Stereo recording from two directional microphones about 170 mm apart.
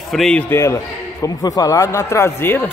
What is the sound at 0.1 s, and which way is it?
A man's voice, 5° left (ahead or behind).